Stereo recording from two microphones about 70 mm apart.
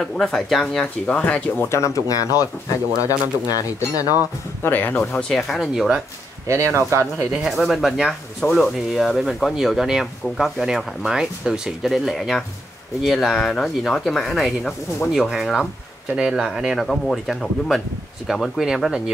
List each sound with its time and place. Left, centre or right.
0.0 s speech: centre
1.0 s speech: centre
1.7 s speech: left
4.6 s speech: left
5.3 s speech: centre
6.4 s speech: right
7.4 s speech: centre
16.2 s speech: centre
16.8 s speech: centre